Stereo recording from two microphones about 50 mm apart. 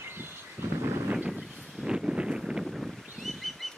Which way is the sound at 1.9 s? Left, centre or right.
Centre.